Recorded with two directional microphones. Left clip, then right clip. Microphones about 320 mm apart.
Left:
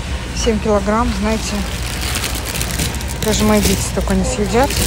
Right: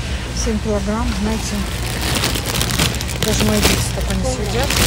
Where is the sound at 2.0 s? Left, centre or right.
Right.